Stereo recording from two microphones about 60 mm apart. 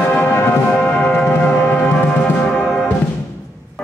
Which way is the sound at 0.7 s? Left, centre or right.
Left.